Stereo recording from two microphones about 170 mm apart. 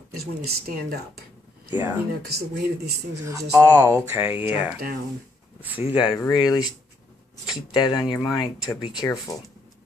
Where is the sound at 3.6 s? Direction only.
20° right (ahead or behind).